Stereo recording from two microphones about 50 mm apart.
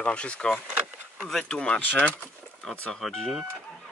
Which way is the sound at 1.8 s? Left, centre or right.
Left.